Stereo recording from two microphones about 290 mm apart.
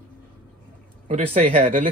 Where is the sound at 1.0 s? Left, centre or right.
Right.